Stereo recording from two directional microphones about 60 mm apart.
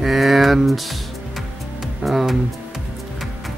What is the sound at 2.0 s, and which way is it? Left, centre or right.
Speech, centre.